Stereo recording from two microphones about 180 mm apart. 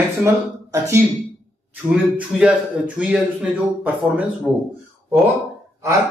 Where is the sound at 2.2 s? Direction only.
5° right (ahead or behind).